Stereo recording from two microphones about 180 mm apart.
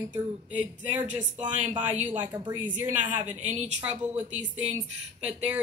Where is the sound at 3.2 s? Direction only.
40° right (ahead or behind).